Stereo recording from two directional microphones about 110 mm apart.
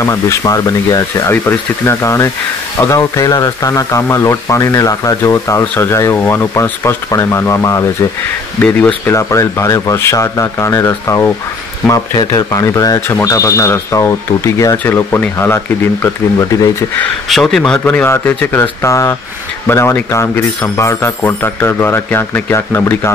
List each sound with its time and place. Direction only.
0.0 s speech: 30° left (ahead or behind)
1.3 s speech: 20° left (ahead or behind)
8.5 s speech: 10° left (ahead or behind)
9.1 s speech: 30° left (ahead or behind)
17.3 s speech: centre (ahead or behind); by 23.1 s 20° left (ahead or behind)